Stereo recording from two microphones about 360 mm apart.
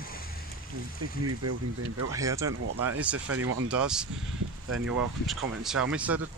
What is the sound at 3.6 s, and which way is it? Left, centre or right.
Speech, centre.